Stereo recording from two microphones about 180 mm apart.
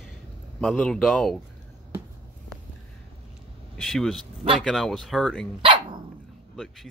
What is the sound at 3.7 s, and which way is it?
Vehicle, centre (ahead or behind).